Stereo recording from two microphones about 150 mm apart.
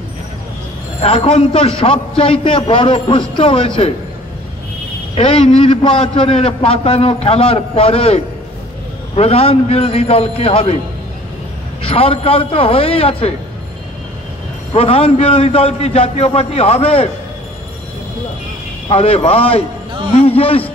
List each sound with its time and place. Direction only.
1.0 s a man's voice: 40° left (ahead or behind)
5.1 s a man's voice: 35° left (ahead or behind)
11.8 s a man's voice: 40° left (ahead or behind)
14.8 s a man's voice: 40° left (ahead or behind)
18.9 s a man's voice: 40° left (ahead or behind)